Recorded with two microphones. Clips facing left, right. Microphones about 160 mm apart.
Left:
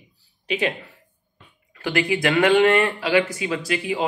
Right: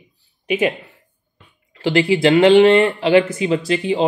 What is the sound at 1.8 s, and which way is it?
Speech, 25° right (ahead or behind).